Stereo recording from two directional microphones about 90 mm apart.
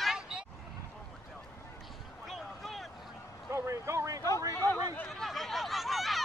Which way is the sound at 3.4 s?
35° right (ahead or behind).